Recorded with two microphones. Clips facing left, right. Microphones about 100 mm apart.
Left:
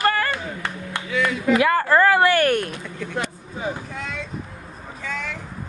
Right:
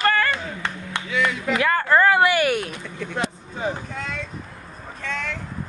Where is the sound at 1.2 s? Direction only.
20° left (ahead or behind).